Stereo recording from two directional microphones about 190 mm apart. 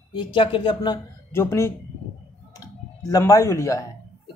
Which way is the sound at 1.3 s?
15° left (ahead or behind).